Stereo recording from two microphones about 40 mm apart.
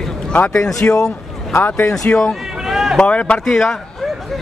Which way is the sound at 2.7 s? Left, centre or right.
Centre.